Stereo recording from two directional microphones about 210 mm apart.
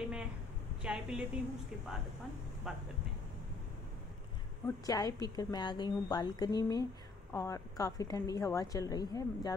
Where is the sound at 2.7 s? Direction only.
Centre (ahead or behind).